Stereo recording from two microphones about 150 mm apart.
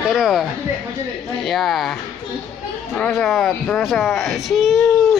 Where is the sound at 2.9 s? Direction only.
5° left (ahead or behind).